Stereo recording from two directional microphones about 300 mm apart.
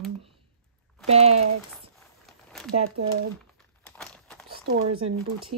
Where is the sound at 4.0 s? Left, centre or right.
Centre.